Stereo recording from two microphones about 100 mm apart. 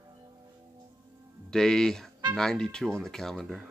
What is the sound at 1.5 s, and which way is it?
Speech, 5° left (ahead or behind).